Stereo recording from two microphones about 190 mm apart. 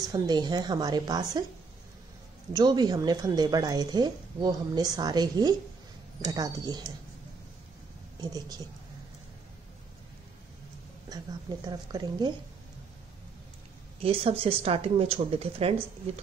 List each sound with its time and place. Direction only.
0.0 s speech: 20° right (ahead or behind)
2.5 s speech: 20° right (ahead or behind)
8.2 s speech: 20° right (ahead or behind)
11.1 s speech: 20° right (ahead or behind)
14.0 s speech: 30° right (ahead or behind)